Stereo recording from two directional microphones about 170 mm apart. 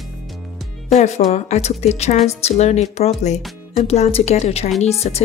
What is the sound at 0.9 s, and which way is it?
A woman's voice, 40° left (ahead or behind).